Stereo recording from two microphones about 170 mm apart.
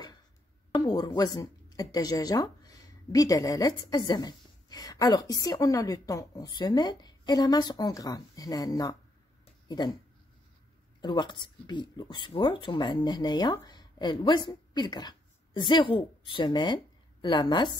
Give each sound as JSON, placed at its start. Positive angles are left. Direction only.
{"t": 0.7, "sound": "speech", "side_deg": 25}
{"t": 11.0, "sound": "speech", "side_deg": 25}